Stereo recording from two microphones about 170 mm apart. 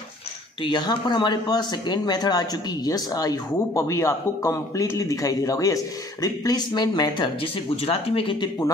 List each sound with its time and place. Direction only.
0.6 s speech: 25° left (ahead or behind)
7.7 s speech: 35° left (ahead or behind)